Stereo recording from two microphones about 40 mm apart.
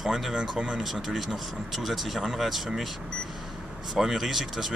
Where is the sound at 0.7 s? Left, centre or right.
Centre.